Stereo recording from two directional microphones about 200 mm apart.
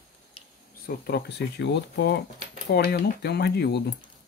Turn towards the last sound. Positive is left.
turn(degrees=55)  # may be behind; listen again after turning